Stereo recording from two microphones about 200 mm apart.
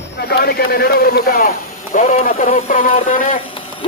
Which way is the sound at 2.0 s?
30° left (ahead or behind).